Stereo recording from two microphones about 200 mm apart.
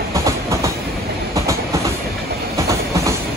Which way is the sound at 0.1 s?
15° right (ahead or behind).